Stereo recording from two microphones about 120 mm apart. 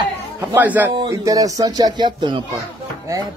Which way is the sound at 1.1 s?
30° right (ahead or behind).